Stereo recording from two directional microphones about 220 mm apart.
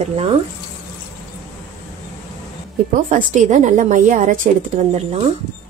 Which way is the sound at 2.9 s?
35° right (ahead or behind).